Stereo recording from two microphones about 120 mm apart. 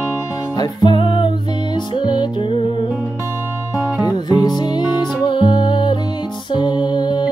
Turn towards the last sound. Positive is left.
turn(degrees=35)  # may be behind; listen again after turning